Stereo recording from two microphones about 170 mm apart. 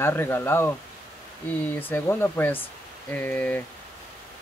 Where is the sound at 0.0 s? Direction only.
15° left (ahead or behind).